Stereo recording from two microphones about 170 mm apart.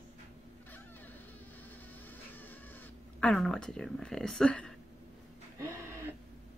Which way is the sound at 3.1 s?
5° left (ahead or behind).